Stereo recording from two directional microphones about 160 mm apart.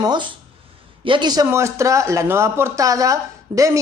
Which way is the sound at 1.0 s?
30° right (ahead or behind).